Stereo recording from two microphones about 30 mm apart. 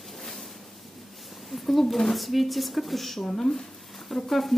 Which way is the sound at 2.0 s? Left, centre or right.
Centre.